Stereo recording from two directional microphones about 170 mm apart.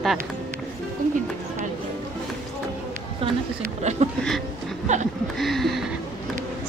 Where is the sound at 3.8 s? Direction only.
40° right (ahead or behind).